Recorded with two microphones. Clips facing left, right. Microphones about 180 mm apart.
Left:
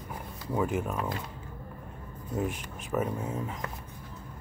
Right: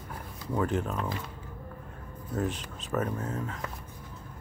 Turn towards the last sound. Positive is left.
turn(degrees=15)  # may be behind; listen again after turning